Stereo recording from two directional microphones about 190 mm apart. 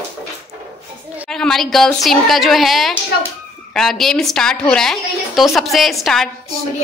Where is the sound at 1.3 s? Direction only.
Centre (ahead or behind).